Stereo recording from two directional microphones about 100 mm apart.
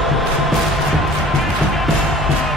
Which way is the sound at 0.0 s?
Centre (ahead or behind).